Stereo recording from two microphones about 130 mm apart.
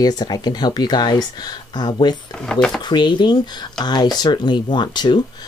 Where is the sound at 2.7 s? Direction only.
35° left (ahead or behind).